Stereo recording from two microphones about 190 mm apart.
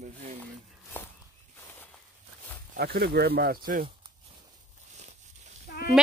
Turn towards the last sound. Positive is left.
turn(degrees=55)  # may be behind; listen again after turning